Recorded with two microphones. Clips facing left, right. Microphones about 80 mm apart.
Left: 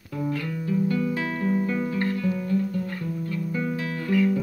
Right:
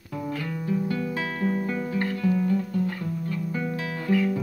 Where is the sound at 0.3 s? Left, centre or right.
Right.